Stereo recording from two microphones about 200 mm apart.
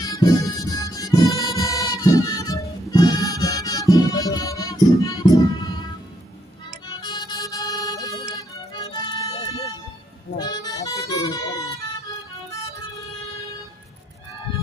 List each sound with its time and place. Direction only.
0.0 s music: 20° left (ahead or behind)
6.9 s music: 20° left (ahead or behind)